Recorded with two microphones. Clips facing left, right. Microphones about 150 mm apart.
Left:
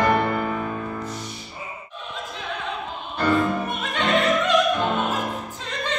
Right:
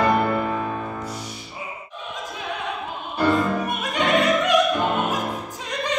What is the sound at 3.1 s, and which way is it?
Music, 10° right (ahead or behind).